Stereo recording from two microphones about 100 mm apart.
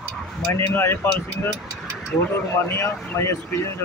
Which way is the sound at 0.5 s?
25° left (ahead or behind).